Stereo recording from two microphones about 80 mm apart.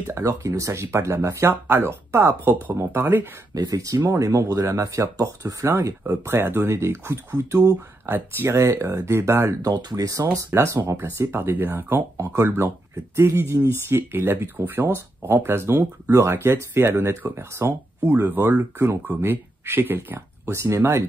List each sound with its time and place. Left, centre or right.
0.0 s speech: right
3.5 s speech: right
9.6 s speech: right